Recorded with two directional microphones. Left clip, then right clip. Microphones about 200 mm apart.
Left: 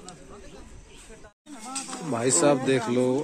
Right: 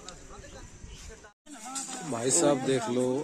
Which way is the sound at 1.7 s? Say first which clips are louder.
Left 3 dB; 30° right (ahead or behind).